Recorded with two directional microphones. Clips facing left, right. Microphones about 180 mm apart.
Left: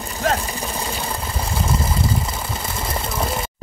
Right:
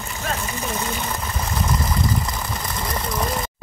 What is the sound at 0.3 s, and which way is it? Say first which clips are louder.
Vehicle: left 2 dB; 35° left (ahead or behind).